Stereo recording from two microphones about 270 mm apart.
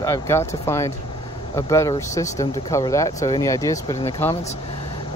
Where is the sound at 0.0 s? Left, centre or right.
Centre.